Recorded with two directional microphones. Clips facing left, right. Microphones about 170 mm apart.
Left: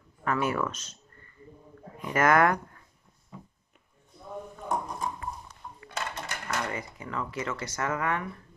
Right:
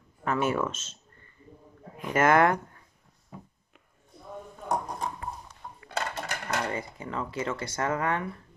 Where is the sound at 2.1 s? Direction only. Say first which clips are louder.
Right 1 dB; 25° right (ahead or behind).